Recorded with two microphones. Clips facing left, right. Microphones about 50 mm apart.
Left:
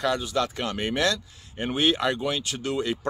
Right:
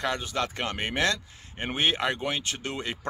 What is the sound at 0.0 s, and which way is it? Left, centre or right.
Speech, right.